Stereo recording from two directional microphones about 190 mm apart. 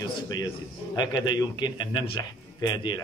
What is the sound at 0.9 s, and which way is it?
A man's voice, 20° left (ahead or behind).